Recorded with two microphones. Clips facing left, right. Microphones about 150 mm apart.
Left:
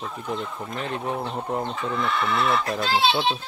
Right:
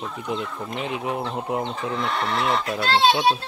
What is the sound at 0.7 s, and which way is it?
Speech, 10° right (ahead or behind).